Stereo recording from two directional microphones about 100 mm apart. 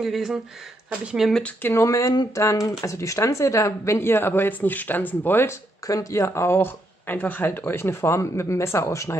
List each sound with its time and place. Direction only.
0.0 s speech: 5° right (ahead or behind)
1.6 s speech: 30° left (ahead or behind)
5.9 s speech: 35° left (ahead or behind)